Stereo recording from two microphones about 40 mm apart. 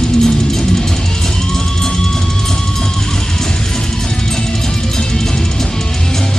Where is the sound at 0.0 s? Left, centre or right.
Centre.